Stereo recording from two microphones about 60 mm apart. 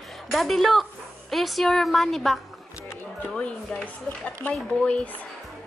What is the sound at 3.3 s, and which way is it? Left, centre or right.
Speech, centre.